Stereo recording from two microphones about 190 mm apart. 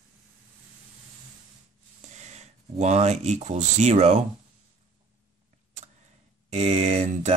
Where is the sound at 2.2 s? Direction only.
35° right (ahead or behind).